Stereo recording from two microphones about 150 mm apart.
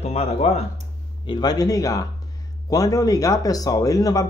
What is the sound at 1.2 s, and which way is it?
Speech, 30° left (ahead or behind).